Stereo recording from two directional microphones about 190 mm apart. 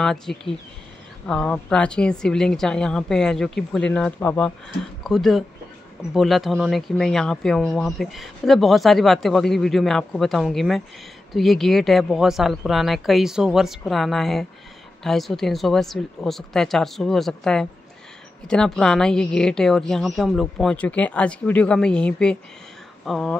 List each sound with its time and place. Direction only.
0.0 s speech: centre (ahead or behind)